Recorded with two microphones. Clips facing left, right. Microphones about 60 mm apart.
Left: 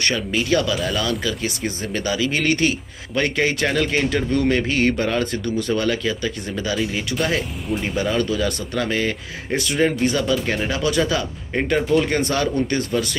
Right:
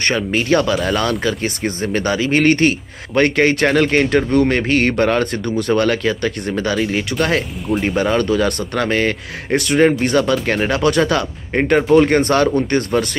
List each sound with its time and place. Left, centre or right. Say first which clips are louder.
0.0 s speech: right 4 dB; right